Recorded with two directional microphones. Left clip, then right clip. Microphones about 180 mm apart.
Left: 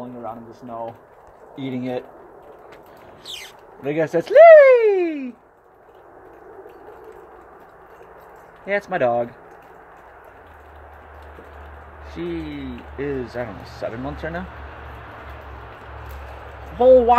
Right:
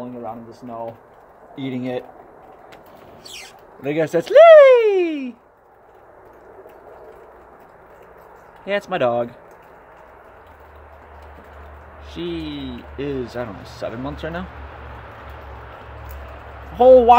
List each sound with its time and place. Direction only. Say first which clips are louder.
0.0 s speech: right 1 dB; 5° right (ahead or behind)
3.3 s speech: even; 15° right (ahead or behind)
8.6 s speech: even; 15° right (ahead or behind)
12.3 s speech: right 1 dB; 20° left (ahead or behind)
12.5 s speech: right 1 dB; 15° right (ahead or behind)
16.7 s speech: right 3 dB; 10° right (ahead or behind)